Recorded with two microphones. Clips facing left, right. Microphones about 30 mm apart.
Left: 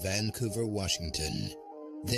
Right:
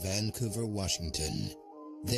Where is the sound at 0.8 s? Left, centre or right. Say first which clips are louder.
Left 2 dB; left.